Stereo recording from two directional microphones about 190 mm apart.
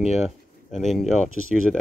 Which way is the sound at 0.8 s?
Centre (ahead or behind).